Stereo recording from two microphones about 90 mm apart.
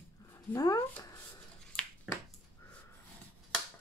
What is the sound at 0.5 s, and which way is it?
Speech, 40° left (ahead or behind).